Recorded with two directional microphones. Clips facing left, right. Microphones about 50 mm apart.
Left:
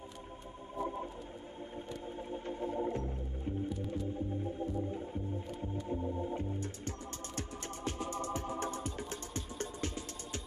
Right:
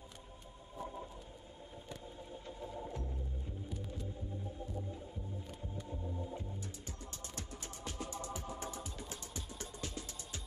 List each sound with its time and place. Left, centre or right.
0.7 s organ: left
2.1 s music: left
5.9 s organ: left
8.5 s music: left